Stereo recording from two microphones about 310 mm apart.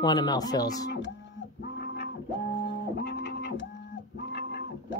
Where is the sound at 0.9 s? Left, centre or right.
Left.